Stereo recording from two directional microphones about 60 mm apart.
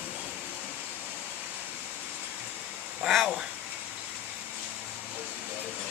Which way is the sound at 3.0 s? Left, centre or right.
Centre.